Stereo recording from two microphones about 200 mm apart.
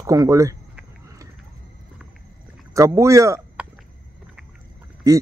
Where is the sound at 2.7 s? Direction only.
15° right (ahead or behind).